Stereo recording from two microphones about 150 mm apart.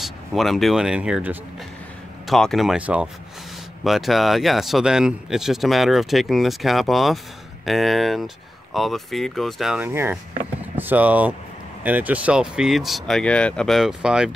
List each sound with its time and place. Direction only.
0.0 s a man's voice: centre (ahead or behind)
9.8 s a man's voice: 15° right (ahead or behind)